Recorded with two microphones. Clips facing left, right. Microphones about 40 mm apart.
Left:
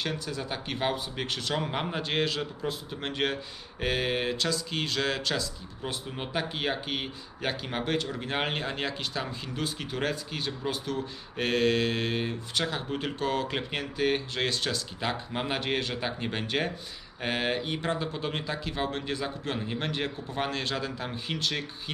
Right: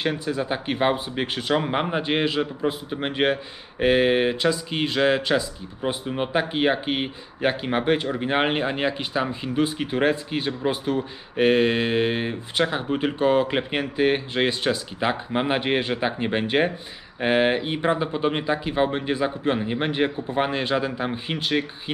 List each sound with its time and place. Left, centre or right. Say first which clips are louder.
0.0 s speech: right 8 dB; right